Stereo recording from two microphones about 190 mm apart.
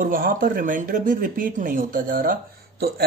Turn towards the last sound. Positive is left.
turn(degrees=-55)  # may be behind; listen again after turning